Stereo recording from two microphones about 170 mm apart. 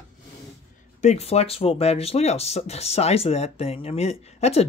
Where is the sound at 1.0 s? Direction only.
40° left (ahead or behind).